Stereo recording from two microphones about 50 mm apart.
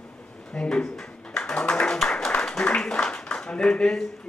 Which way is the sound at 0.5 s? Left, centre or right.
Centre.